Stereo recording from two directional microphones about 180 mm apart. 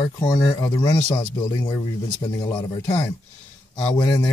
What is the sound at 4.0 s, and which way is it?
Speech, 25° left (ahead or behind).